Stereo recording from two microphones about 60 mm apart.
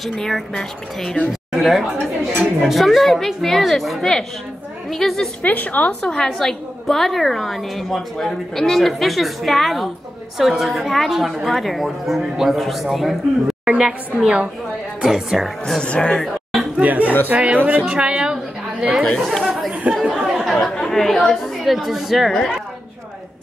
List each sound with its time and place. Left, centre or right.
0.0 s speech: centre
1.5 s a woman's voice: centre
5.4 s a woman's voice: left
6.2 s a woman's voice: centre
15.8 s speech: centre
16.7 s a woman's voice: right
19.2 s speech: centre
19.7 s speech: centre
20.0 s speech: centre
20.6 s a woman's voice: centre